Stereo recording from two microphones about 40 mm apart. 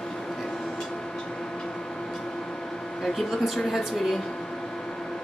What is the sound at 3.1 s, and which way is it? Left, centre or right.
A woman's voice, centre.